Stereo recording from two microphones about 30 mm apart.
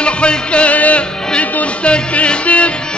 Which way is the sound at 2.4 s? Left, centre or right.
Left.